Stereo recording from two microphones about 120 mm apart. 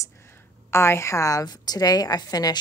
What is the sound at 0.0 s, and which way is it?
A woman's voice, 20° left (ahead or behind).